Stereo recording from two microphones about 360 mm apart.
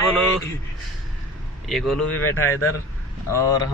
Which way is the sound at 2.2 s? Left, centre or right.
Left.